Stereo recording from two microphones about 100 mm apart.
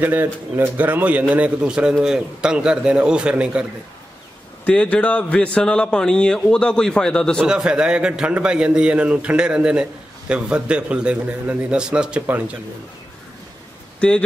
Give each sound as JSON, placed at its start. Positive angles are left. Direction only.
{"t": 0.0, "sound": "a man's voice", "side_deg": -20}
{"t": 4.6, "sound": "a man's voice", "side_deg": 15}
{"t": 7.4, "sound": "a man's voice", "side_deg": -10}
{"t": 13.9, "sound": "speech", "side_deg": 10}